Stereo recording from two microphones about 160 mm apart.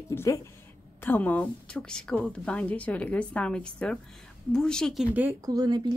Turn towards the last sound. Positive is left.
turn(degrees=-25)  # may be behind; listen again after turning